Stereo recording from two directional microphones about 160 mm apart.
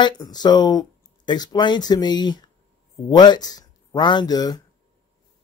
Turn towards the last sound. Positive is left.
turn(degrees=25)  # may be behind; listen again after turning